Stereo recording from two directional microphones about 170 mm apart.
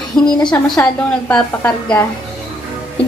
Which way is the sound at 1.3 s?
5° left (ahead or behind).